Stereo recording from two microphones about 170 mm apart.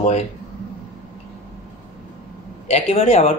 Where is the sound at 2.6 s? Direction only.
35° left (ahead or behind).